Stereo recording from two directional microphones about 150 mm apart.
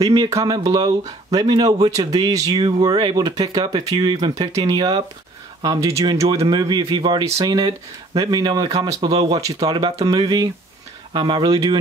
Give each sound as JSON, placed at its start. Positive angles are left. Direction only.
{"t": 0.0, "sound": "speech", "side_deg": -25}